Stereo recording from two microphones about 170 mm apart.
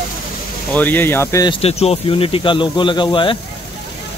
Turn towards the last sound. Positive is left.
turn(degrees=30)  # may be behind; listen again after turning